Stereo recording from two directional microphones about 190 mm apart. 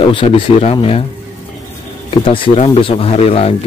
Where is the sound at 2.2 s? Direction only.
30° left (ahead or behind).